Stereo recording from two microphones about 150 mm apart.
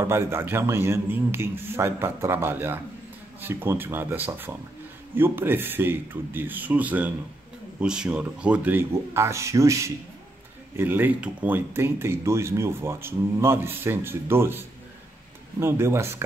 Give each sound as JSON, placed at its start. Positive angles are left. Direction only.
{"t": 0.0, "sound": "speech", "side_deg": -15}